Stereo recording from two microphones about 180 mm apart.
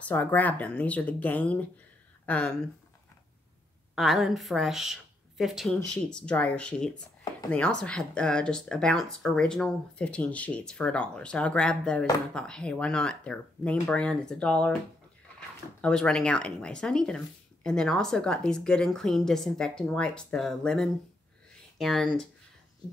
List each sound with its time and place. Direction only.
0.0 s speech: 10° left (ahead or behind)
3.9 s speech: centre (ahead or behind)
15.8 s speech: 5° left (ahead or behind)